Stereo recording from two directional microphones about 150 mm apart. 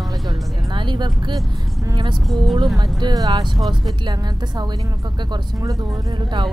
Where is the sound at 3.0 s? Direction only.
25° right (ahead or behind).